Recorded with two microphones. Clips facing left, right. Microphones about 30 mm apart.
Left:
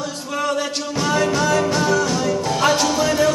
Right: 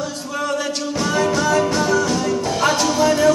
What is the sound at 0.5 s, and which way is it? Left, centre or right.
Music, centre.